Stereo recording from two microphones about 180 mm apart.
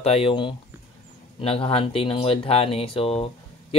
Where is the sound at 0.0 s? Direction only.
35° left (ahead or behind).